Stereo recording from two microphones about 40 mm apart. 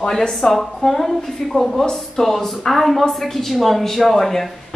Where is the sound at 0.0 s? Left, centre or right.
Centre.